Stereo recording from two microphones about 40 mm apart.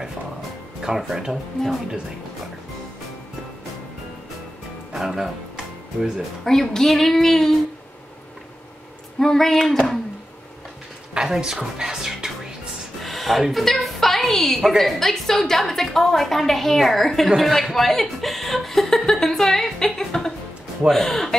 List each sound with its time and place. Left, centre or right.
0.9 s speech: centre
1.3 s speech: centre
4.9 s music: centre
6.4 s a woman's voice: centre
9.2 s a woman's voice: centre
11.1 s speech: centre
13.0 s a woman's voice: centre
19.0 s music: centre
20.9 s a woman's voice: centre